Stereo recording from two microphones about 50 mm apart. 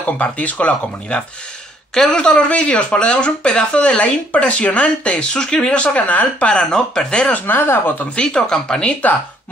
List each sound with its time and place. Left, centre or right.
0.0 s speech: left
2.0 s speech: centre
7.3 s speech: left
8.2 s speech: centre